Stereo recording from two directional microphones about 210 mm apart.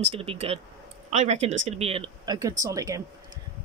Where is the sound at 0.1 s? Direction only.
25° right (ahead or behind).